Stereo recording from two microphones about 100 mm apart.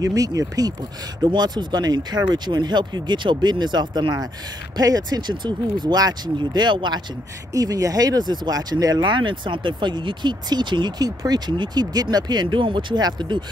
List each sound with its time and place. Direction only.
0.0 s speech: 35° right (ahead or behind)
7.5 s speech: 35° right (ahead or behind)
9.0 s speech: 55° right (ahead or behind)